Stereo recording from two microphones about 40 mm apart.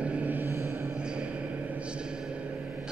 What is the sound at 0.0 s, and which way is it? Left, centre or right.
Mantra, right.